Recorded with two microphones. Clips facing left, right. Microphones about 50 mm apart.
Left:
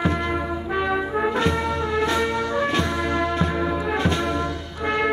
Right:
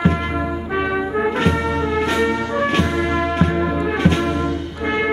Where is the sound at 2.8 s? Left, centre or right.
Right.